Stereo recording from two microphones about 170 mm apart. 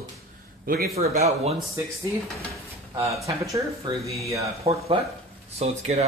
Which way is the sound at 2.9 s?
20° right (ahead or behind).